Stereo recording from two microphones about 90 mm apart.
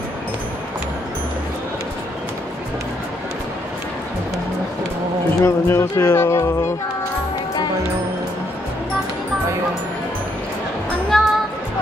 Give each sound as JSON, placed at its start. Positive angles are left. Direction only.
{"t": 5.4, "sound": "speech", "side_deg": 30}
{"t": 11.1, "sound": "music", "side_deg": 5}